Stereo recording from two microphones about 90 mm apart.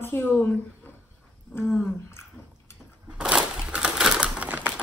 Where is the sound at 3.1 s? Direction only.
10° right (ahead or behind).